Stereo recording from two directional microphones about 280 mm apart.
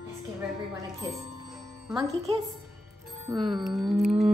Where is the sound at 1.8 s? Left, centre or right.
Centre.